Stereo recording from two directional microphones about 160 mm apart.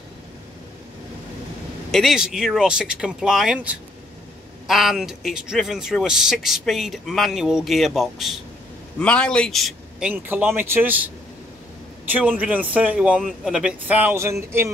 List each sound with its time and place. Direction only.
1.9 s speech: centre (ahead or behind)
12.1 s a man's voice: 10° right (ahead or behind)